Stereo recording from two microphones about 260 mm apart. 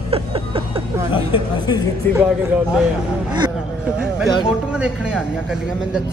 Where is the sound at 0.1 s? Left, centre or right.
Right.